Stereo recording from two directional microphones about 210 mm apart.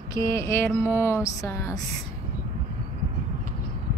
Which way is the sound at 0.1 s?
15° left (ahead or behind).